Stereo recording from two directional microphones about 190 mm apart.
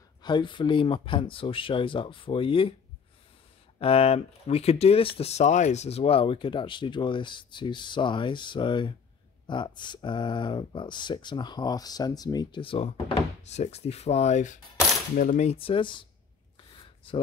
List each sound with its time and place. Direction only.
0.2 s speech: 25° left (ahead or behind)
3.8 s speech: 30° left (ahead or behind)
16.7 s a sound: 25° left (ahead or behind)